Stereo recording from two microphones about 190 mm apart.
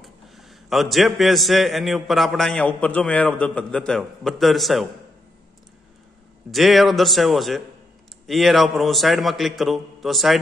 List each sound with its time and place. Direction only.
0.0 s a man's voice: centre (ahead or behind)
6.5 s a man's voice: centre (ahead or behind)